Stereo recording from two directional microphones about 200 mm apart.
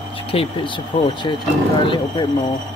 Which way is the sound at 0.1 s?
30° left (ahead or behind).